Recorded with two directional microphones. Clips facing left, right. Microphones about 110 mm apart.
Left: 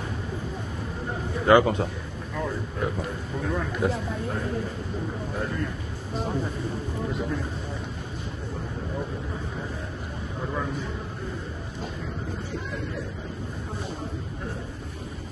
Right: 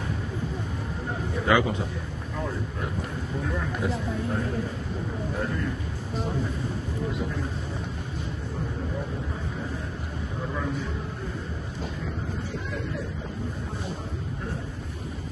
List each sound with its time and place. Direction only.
1.4 s a man's voice: 45° left (ahead or behind)
3.8 s a man's voice: 55° left (ahead or behind)